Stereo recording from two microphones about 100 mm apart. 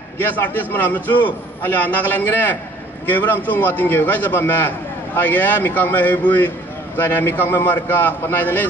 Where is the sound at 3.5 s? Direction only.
20° left (ahead or behind).